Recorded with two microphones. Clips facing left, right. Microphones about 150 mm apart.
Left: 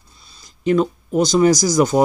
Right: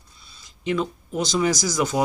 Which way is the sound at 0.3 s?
40° left (ahead or behind).